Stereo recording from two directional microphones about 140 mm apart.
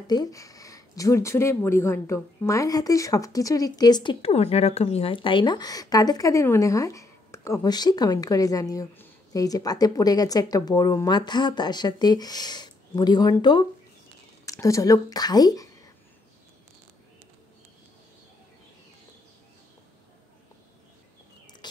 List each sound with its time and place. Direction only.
0.0 s speech: 30° left (ahead or behind)